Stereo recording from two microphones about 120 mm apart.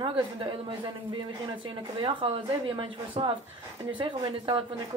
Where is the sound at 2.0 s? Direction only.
45° right (ahead or behind).